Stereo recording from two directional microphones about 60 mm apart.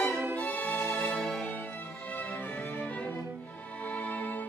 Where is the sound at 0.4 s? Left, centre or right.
Left.